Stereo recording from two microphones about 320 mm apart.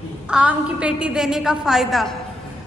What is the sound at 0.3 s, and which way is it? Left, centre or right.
A woman's voice, centre.